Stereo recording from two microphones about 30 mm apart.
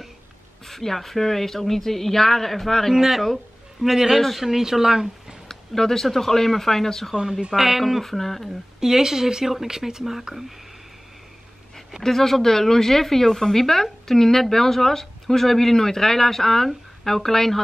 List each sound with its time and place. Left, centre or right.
0.7 s speech: centre
2.9 s speech: centre
5.5 s speech: centre
7.2 s speech: centre
8.0 s speech: centre
8.7 s speech: centre
12.0 s speech: centre